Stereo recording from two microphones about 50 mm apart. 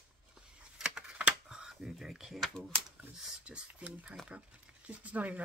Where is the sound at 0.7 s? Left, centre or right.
Centre.